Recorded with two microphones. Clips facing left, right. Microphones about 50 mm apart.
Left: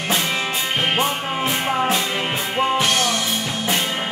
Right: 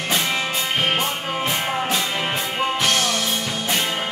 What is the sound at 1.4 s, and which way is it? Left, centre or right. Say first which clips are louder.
Music: left 3 dB; centre.